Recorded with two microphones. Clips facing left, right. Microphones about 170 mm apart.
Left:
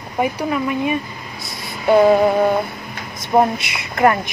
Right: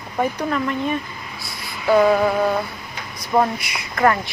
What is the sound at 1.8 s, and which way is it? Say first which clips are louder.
Speech: left 3 dB; 30° left (ahead or behind).